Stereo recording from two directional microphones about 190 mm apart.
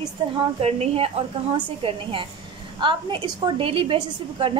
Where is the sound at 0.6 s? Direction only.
30° right (ahead or behind).